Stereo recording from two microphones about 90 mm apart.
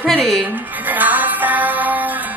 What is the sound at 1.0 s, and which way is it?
Music, 20° right (ahead or behind).